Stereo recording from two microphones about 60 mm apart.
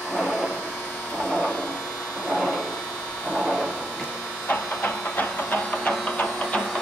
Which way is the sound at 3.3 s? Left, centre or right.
Right.